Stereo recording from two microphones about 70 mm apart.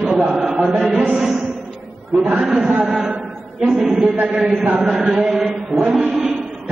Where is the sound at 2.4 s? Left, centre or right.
Centre.